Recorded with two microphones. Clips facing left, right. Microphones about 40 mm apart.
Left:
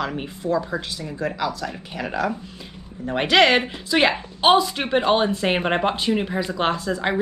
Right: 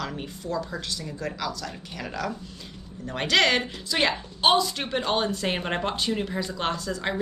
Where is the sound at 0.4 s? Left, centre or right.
Centre.